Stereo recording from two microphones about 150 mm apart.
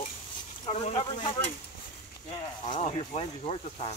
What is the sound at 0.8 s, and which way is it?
Speech, 35° left (ahead or behind).